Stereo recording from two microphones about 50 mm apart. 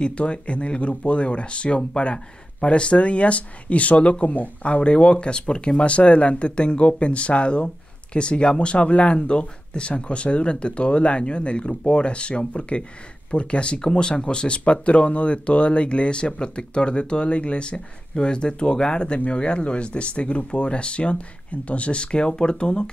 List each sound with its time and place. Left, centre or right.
0.0 s speech: left